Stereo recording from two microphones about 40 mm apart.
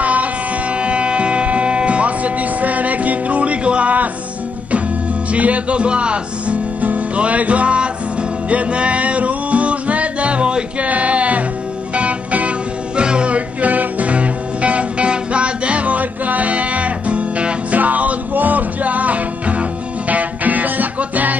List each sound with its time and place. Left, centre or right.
0.0 s a sound: right
0.7 s music: right
5.3 s music: right
12.9 s music: right